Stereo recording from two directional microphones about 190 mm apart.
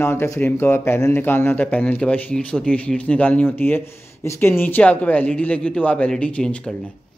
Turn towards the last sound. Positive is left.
turn(degrees=5)  # may be behind; listen again after turning